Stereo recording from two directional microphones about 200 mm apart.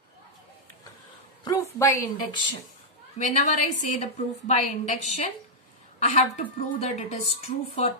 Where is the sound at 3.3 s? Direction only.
40° left (ahead or behind).